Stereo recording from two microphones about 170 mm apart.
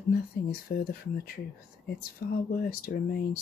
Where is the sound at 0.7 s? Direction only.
60° left (ahead or behind).